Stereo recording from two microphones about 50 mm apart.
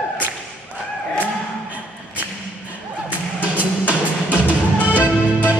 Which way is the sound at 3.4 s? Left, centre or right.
Right.